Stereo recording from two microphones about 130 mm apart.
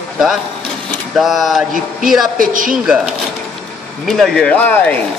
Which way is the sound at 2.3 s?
90° right.